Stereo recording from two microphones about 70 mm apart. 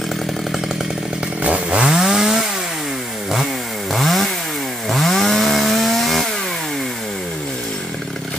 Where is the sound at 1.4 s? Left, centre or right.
Centre.